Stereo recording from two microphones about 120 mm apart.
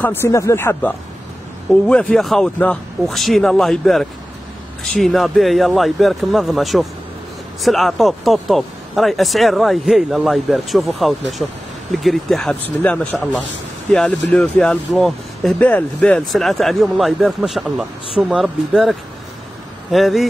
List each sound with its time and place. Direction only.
0.0 s speech: 20° left (ahead or behind)
1.7 s speech: 10° left (ahead or behind)